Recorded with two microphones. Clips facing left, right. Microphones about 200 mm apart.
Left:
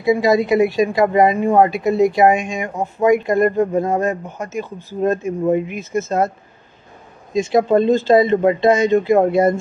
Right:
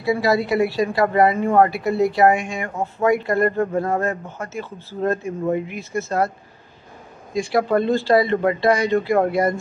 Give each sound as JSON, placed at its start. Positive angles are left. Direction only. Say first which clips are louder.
{"t": 0.0, "sound": "speech", "louder": "left 4 dB", "side_deg": 15}
{"t": 7.3, "sound": "speech", "louder": "left 4 dB", "side_deg": 20}